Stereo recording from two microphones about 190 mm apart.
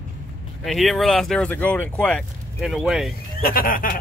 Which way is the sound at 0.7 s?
Centre (ahead or behind).